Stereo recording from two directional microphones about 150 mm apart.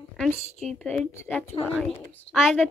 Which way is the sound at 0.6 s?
5° left (ahead or behind).